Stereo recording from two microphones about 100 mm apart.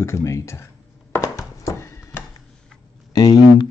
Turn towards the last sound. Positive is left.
turn(degrees=40)  # may be behind; listen again after turning